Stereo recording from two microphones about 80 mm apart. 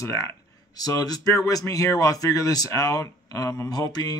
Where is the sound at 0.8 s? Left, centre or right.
Left.